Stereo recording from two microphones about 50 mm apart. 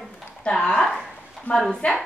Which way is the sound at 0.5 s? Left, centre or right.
Centre.